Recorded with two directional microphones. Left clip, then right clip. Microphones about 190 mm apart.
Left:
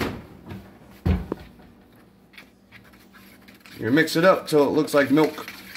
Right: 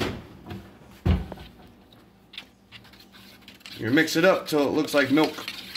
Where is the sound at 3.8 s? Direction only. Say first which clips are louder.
Left 2 dB; 35° left (ahead or behind).